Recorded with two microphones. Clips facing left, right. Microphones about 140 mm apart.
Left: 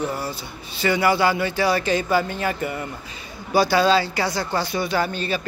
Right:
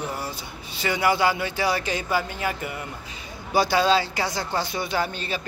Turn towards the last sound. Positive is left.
turn(degrees=-20)  # may be behind; listen again after turning